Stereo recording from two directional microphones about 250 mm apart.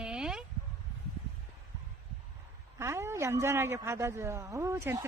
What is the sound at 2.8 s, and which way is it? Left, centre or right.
A woman's voice, centre.